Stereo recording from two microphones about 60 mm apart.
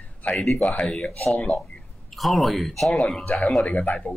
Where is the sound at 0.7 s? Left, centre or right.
Centre.